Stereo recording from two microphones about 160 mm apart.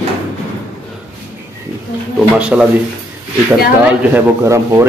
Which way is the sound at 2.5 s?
5° right (ahead or behind).